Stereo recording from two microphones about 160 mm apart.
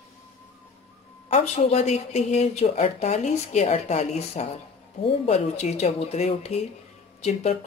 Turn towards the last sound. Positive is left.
turn(degrees=45)  # may be behind; listen again after turning